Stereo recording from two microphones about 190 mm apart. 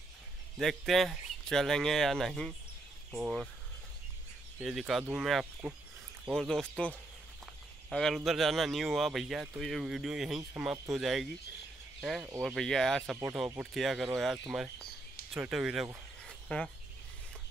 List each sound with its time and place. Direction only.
0.6 s speech: centre (ahead or behind)
4.6 s speech: centre (ahead or behind)
7.9 s speech: centre (ahead or behind)
13.2 s speech: 10° right (ahead or behind); by 16.7 s 5° left (ahead or behind)